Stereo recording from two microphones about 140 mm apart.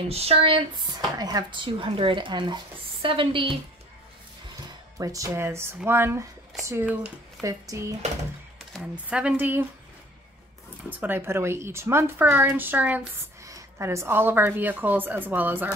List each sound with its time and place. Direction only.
0.1 s speech: 45° right (ahead or behind)
4.9 s a woman's voice: 25° right (ahead or behind)
8.9 s a woman's voice: 10° right (ahead or behind)
10.9 s a woman's voice: 15° right (ahead or behind)
13.4 s a woman's voice: 25° right (ahead or behind)